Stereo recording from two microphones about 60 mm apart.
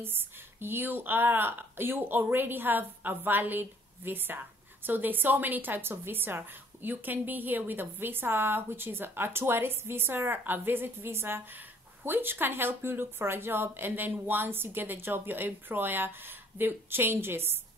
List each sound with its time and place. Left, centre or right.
0.0 s a woman's voice: right